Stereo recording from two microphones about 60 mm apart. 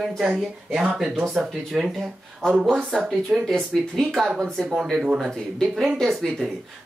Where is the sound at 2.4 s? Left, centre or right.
Centre.